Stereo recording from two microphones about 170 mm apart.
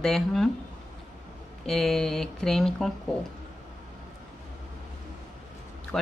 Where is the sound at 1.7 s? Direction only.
Centre (ahead or behind).